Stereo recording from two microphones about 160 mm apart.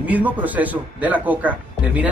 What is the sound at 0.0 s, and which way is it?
Speech, 10° right (ahead or behind).